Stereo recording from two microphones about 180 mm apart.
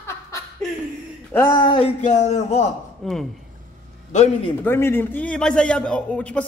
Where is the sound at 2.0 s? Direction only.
40° left (ahead or behind).